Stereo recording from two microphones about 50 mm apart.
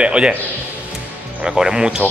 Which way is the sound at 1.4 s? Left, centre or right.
Centre.